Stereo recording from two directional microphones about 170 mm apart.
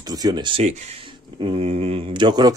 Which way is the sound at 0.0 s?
25° right (ahead or behind).